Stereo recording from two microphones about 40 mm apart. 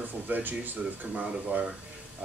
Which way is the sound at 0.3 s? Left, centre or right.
Right.